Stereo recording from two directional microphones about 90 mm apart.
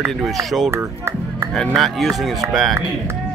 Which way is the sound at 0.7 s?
30° right (ahead or behind).